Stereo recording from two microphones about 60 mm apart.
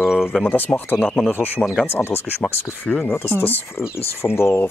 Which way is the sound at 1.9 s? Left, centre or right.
Left.